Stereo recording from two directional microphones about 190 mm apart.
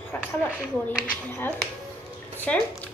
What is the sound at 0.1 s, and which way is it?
Speech, 10° left (ahead or behind).